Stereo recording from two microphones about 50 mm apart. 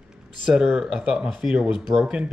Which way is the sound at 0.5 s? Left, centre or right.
Centre.